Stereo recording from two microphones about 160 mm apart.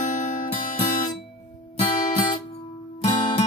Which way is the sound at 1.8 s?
50° left (ahead or behind).